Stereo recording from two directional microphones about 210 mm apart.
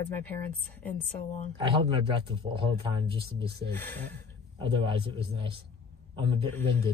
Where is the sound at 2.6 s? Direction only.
25° right (ahead or behind).